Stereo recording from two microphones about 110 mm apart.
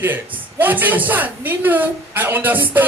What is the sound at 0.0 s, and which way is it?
A woman's voice, 15° right (ahead or behind).